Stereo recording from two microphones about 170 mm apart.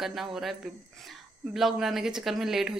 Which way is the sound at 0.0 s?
Centre (ahead or behind).